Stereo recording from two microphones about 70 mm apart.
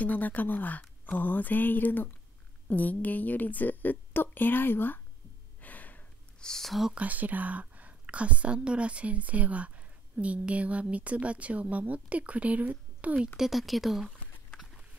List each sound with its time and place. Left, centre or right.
0.0 s a woman's voice: left
5.6 s gasp: left
6.4 s speech: centre
6.9 s a woman's voice: right
13.4 s speech: centre